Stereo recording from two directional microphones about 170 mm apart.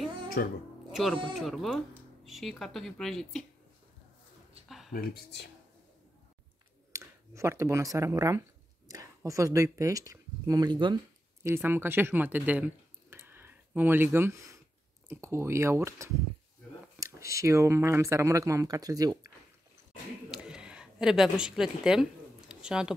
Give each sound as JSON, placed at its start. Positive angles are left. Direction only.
{"t": 0.4, "sound": "speech", "side_deg": 60}
{"t": 0.9, "sound": "speech", "side_deg": 0}
{"t": 4.6, "sound": "a sound", "side_deg": 0}
{"t": 4.9, "sound": "speech", "side_deg": 65}
{"t": 6.9, "sound": "speech", "side_deg": -15}
{"t": 11.4, "sound": "speech", "side_deg": -15}
{"t": 20.4, "sound": "speech", "side_deg": -5}
{"t": 22.5, "sound": "a sound", "side_deg": -5}